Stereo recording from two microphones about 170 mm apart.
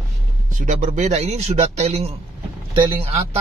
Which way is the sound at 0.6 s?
50° right (ahead or behind).